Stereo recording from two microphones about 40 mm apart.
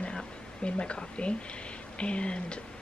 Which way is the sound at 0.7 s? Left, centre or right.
Left.